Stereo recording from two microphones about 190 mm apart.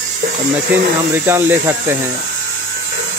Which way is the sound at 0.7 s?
10° right (ahead or behind).